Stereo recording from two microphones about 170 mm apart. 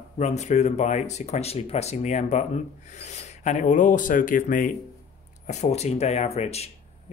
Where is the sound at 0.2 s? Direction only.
40° left (ahead or behind).